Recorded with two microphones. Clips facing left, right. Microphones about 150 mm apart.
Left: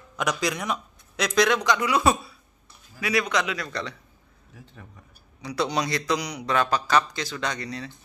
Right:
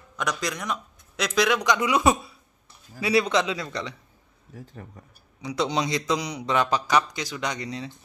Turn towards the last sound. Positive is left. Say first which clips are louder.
# even
turn(degrees=-20)  # may be behind; listen again after turning